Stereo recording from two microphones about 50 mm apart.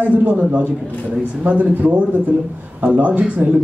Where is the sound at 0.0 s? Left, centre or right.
Right.